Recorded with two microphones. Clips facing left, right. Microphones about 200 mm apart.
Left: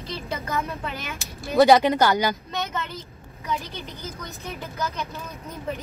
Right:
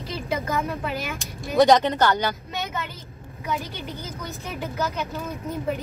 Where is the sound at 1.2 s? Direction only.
5° left (ahead or behind).